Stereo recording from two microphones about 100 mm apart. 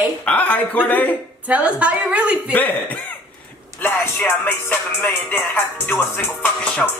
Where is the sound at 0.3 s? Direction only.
15° left (ahead or behind).